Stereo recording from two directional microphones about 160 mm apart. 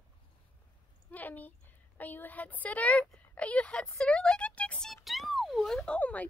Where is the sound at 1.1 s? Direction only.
10° left (ahead or behind).